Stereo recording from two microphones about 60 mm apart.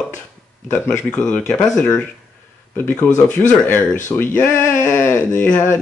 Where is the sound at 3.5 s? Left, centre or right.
Left.